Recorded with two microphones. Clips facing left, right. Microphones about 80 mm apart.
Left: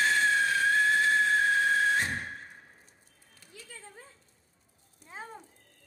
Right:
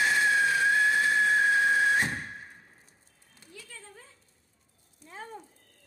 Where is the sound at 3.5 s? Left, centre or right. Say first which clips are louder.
Right 1 dB; centre.